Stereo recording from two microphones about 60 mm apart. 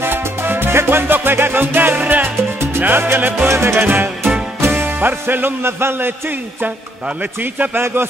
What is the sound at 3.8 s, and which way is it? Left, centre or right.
Speech, right.